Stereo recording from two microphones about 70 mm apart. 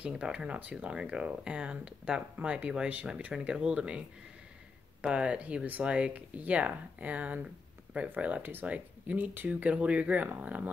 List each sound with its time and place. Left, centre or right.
0.0 s speech: centre
5.0 s speech: centre